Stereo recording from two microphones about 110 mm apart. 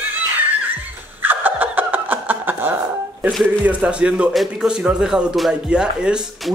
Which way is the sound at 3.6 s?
10° right (ahead or behind).